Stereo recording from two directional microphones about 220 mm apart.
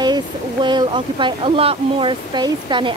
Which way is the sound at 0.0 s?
20° right (ahead or behind).